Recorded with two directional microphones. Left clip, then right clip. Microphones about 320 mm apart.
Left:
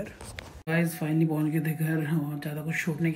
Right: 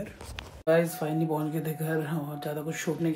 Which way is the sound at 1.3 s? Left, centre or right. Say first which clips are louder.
Left 1 dB; left.